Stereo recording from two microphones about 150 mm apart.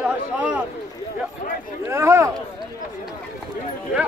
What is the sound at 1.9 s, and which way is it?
Speech, 15° right (ahead or behind).